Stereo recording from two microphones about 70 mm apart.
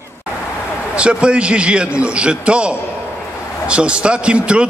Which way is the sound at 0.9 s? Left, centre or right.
Centre.